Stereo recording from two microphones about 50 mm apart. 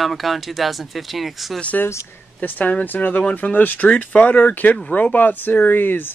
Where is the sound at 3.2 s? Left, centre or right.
Left.